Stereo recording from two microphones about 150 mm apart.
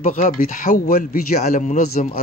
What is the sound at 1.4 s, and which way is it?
Speech, 55° left (ahead or behind).